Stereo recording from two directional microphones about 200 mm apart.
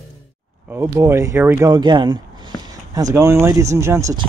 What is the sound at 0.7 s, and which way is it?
Speech, 15° right (ahead or behind).